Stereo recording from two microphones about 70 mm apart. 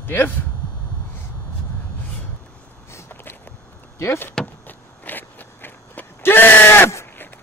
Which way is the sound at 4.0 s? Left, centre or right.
Left.